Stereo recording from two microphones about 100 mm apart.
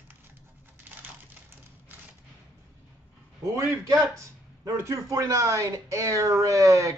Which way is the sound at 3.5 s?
30° right (ahead or behind).